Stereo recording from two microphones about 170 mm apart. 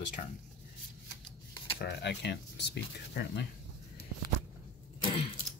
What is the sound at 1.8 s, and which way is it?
Speech, 90° left.